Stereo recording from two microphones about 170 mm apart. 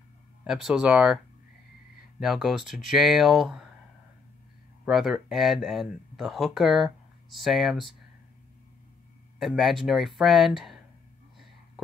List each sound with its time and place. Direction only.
0.4 s speech: 5° right (ahead or behind)
4.8 s speech: centre (ahead or behind)
9.4 s speech: centre (ahead or behind)